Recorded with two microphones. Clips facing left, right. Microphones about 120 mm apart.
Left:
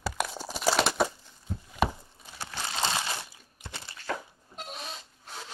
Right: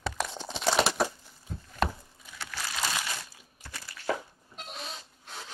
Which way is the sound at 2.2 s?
30° left (ahead or behind).